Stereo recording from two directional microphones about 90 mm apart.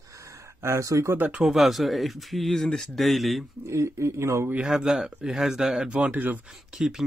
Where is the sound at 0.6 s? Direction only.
35° right (ahead or behind).